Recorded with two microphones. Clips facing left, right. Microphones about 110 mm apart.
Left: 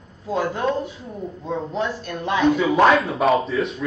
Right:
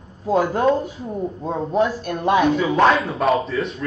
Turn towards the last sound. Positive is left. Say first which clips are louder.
# left 1 dB
turn(degrees=0)  # may be behind; listen again after turning